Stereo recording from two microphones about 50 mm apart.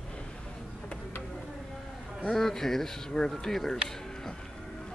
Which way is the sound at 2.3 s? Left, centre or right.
Centre.